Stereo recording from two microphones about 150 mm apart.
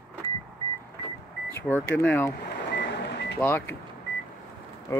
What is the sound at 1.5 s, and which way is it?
Speech, 15° left (ahead or behind).